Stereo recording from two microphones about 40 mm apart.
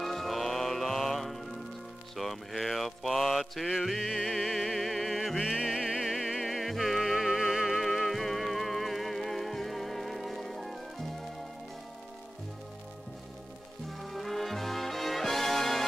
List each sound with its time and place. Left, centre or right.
0.0 s music: centre
2.1 s mantra: centre
3.6 s music: centre
5.8 s music: centre
6.4 s music: centre
7.6 s music: centre
13.8 s music: centre